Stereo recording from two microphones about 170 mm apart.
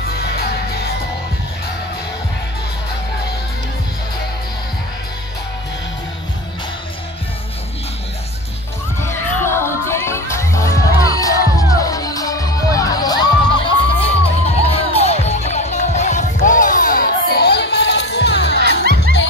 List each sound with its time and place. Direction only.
9.0 s music: 15° left (ahead or behind); by 18.6 s 80° left